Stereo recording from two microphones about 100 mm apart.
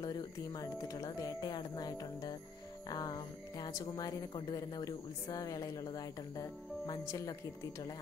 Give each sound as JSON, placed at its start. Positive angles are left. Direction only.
{"t": 0.0, "sound": "speech", "side_deg": 40}